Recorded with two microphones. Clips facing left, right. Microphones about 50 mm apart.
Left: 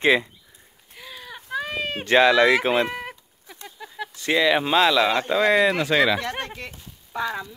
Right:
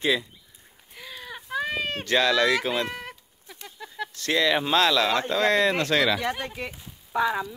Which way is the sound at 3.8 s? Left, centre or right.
Centre.